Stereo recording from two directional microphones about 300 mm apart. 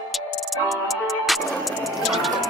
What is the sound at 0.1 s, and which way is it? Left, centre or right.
Music, centre.